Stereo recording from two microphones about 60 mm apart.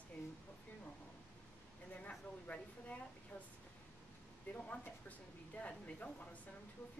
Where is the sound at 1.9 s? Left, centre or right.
Left.